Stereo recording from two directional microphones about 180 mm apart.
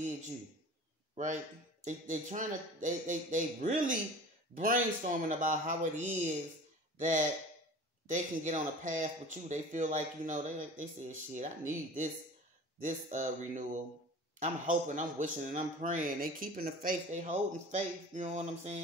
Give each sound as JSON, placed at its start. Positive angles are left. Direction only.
{"t": 1.1, "sound": "a man's voice", "side_deg": -40}
{"t": 12.8, "sound": "a man's voice", "side_deg": -45}